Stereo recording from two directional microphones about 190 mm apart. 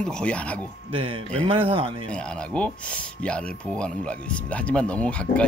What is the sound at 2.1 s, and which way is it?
Speech, 5° left (ahead or behind).